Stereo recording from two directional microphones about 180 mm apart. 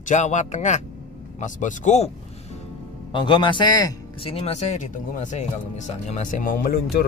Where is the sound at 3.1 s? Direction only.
25° left (ahead or behind); by 7.0 s 55° left (ahead or behind).